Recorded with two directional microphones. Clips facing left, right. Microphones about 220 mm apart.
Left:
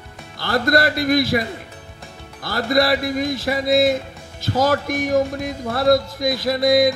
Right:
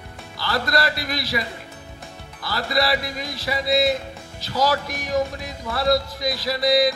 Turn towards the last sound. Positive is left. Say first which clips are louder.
# left 4 dB
turn(degrees=50)  # may be behind; listen again after turning